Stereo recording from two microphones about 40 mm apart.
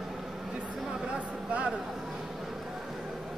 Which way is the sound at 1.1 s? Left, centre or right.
Right.